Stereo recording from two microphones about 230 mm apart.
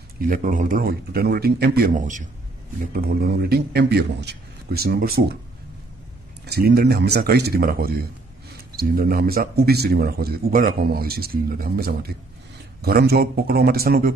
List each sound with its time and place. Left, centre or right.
0.3 s a man's voice: right
6.4 s a man's voice: right